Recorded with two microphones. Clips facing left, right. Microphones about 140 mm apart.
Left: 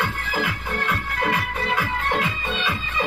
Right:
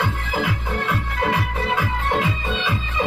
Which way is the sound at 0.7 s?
25° right (ahead or behind).